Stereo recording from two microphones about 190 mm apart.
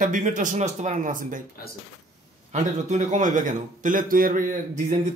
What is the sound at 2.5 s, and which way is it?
Speech, 40° right (ahead or behind).